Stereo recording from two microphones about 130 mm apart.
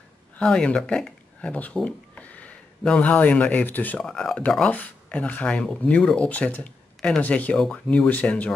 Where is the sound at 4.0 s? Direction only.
5° left (ahead or behind).